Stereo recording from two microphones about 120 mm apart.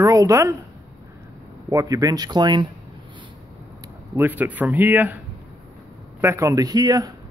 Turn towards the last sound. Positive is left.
turn(degrees=-30)  # may be behind; listen again after turning